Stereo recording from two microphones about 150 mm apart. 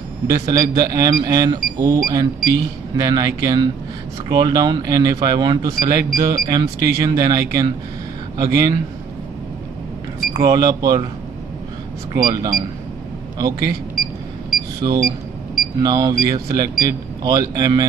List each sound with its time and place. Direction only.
0.3 s speech: 25° right (ahead or behind)
10.4 s speech: 25° right (ahead or behind)
12.2 s speech: 25° right (ahead or behind)
14.8 s speech: 25° right (ahead or behind)